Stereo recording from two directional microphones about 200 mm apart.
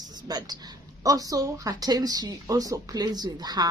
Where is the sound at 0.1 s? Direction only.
20° right (ahead or behind).